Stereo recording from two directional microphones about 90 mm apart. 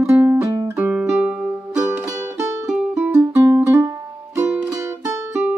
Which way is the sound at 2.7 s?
5° right (ahead or behind).